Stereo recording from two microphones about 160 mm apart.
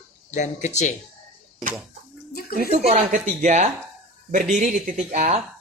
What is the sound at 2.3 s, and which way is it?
Speech, 75° left (ahead or behind).